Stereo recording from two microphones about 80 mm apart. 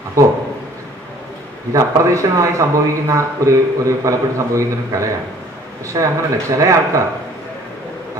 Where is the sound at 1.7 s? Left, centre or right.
Right.